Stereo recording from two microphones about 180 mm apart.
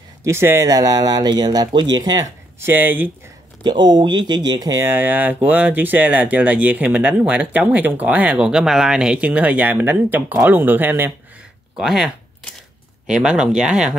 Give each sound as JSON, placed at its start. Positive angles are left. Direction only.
{"t": 0.2, "sound": "speech", "side_deg": -15}
{"t": 3.9, "sound": "speech", "side_deg": -25}
{"t": 11.7, "sound": "a sound", "side_deg": -5}
{"t": 13.0, "sound": "speech", "side_deg": -5}